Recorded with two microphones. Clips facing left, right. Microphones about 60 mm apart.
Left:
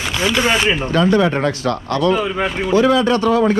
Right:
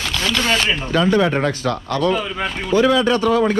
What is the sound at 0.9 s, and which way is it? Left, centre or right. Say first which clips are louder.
Speech: even; left.